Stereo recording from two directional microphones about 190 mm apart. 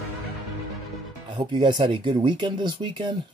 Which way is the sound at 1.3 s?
25° right (ahead or behind).